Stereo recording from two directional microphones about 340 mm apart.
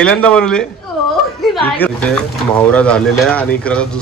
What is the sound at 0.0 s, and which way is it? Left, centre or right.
Speech, centre.